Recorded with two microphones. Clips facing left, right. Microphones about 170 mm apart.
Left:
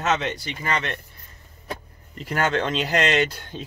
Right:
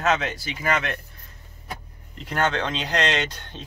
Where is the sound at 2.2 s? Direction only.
5° left (ahead or behind).